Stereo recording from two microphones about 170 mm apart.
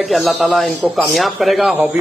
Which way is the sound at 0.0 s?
Centre (ahead or behind).